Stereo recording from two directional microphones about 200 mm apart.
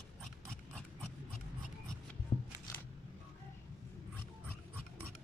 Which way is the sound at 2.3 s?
30° left (ahead or behind).